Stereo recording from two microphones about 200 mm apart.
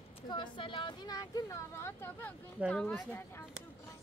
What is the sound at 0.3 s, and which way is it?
Speech, 25° left (ahead or behind).